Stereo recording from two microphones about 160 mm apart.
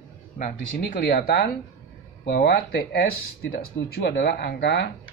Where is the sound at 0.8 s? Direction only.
70° left (ahead or behind).